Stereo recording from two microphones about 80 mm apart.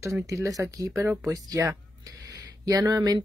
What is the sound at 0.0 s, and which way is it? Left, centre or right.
Speech, right.